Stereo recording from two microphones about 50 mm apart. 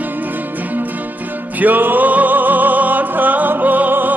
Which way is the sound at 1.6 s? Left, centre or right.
Right.